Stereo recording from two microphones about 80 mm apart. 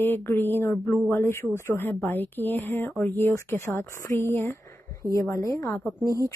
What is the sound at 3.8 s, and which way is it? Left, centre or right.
Speech, left.